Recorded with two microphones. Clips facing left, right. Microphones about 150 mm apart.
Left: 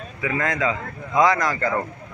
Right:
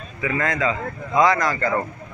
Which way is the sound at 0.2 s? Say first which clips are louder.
Right 1 dB; 10° left (ahead or behind).